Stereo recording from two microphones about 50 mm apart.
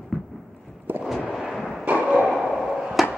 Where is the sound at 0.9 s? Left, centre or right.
Right.